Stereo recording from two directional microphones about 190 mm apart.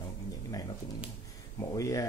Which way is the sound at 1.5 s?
15° left (ahead or behind).